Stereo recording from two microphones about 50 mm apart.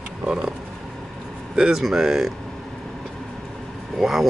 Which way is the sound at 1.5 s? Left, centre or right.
Centre.